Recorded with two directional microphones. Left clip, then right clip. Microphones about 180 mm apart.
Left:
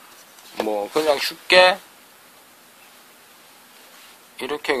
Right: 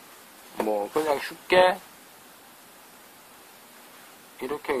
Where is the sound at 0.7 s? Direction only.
25° left (ahead or behind).